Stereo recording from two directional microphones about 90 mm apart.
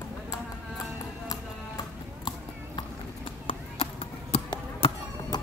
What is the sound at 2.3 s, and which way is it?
Clip-clop, 70° left (ahead or behind).